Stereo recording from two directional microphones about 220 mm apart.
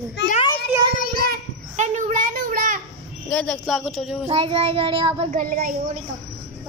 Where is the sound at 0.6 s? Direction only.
45° left (ahead or behind).